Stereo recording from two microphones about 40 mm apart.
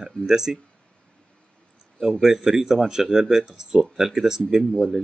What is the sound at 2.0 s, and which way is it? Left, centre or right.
Speech, centre.